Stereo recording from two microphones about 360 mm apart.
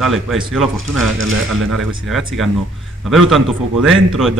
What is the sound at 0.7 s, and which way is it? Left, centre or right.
Speech, right.